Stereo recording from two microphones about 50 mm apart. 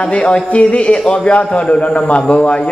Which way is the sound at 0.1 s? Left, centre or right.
Left.